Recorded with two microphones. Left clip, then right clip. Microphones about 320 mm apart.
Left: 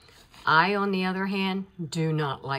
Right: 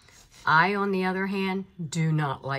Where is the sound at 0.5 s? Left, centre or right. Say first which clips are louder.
Even; centre.